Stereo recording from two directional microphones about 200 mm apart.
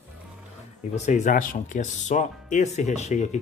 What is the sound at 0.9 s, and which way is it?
Speech, 35° left (ahead or behind).